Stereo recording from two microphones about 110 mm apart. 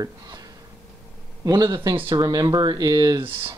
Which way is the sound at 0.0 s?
35° right (ahead or behind).